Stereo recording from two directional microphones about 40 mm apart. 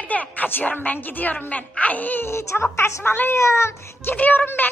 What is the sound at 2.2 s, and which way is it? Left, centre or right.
Speech, left.